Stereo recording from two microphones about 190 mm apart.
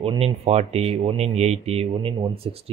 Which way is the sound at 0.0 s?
30° right (ahead or behind).